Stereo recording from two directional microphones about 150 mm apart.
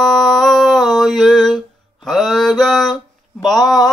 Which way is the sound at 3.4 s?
Centre (ahead or behind).